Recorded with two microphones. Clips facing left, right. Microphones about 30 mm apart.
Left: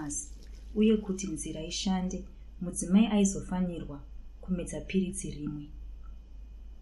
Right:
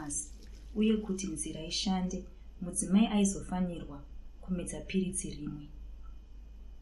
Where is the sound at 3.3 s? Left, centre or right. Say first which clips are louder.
Left 2 dB; left.